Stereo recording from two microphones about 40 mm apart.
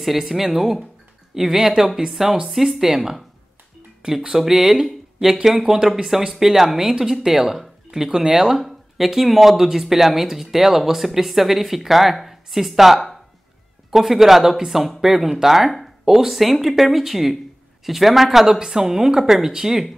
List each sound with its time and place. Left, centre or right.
0.0 s speech: centre
4.0 s speech: right
4.4 s speech: centre